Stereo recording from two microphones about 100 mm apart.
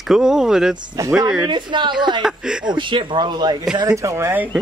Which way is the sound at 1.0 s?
30° right (ahead or behind).